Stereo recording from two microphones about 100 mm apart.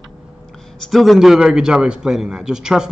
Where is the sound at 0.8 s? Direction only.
Centre (ahead or behind).